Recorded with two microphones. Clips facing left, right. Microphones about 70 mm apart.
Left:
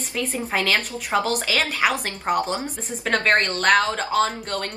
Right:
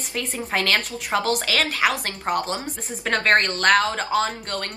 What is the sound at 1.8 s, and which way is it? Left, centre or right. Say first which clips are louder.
Speech: even; centre.